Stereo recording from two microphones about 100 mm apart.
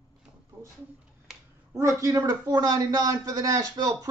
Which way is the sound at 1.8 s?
30° right (ahead or behind).